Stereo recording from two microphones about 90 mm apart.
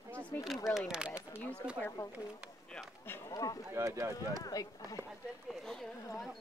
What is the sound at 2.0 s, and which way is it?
Speech, 40° left (ahead or behind).